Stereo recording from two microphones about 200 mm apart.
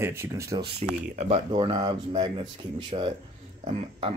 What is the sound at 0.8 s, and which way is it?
Speech, 35° right (ahead or behind).